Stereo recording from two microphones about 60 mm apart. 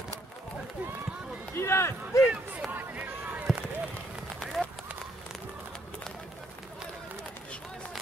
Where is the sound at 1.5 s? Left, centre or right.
Left.